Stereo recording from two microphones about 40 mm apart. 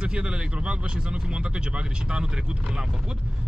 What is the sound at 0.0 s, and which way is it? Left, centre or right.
Speech, right.